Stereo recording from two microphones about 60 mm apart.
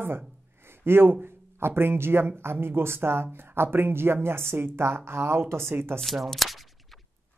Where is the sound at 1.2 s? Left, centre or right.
Right.